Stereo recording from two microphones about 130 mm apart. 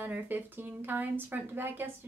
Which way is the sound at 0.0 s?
15° right (ahead or behind).